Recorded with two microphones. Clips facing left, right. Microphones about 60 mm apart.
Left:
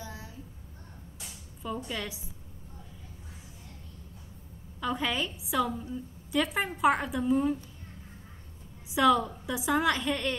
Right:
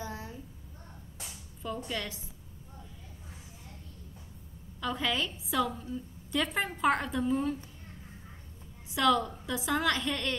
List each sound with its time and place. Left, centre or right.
0.0 s a sound: right
1.9 s a woman's voice: centre
4.7 s a woman's voice: centre
8.9 s a woman's voice: centre